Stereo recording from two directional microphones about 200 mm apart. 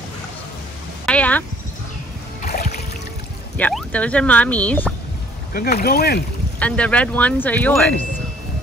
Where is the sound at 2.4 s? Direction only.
40° left (ahead or behind).